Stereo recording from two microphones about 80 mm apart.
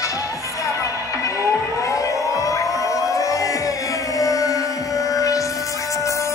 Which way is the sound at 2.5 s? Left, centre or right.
Left.